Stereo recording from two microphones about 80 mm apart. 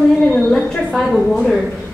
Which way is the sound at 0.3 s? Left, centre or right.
Centre.